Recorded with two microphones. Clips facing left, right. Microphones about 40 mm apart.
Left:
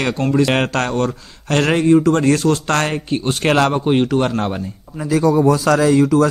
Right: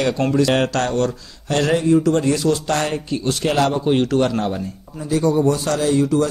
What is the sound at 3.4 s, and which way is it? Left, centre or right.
Speech, left.